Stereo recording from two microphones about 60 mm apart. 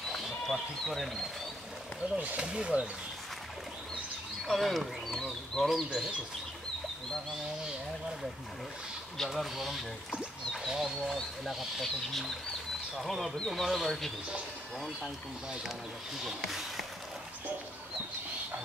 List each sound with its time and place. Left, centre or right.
0.1 s speech: centre
2.1 s speech: centre
4.5 s speech: centre
9.2 s speech: centre
10.5 s a sound: centre
11.1 s speech: centre
16.3 s speech: centre